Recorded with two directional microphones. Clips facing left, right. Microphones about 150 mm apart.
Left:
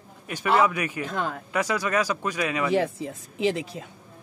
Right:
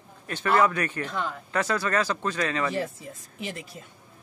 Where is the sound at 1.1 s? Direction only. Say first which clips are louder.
Left 2 dB; 50° left (ahead or behind).